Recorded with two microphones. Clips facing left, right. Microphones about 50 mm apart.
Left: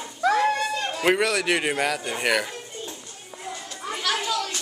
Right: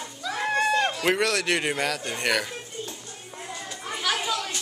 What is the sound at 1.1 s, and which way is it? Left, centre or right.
A woman's voice, centre.